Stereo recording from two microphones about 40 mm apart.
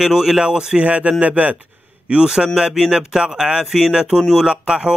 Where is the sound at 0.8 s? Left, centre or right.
Right.